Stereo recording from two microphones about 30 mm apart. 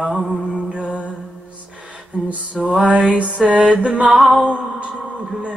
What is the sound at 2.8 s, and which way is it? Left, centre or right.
Music, right.